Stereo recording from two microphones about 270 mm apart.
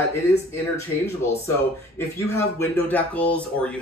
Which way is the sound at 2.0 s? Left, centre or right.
Centre.